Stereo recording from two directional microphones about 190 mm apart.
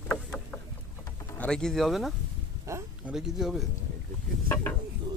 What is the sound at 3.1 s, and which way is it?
Speech, 5° right (ahead or behind).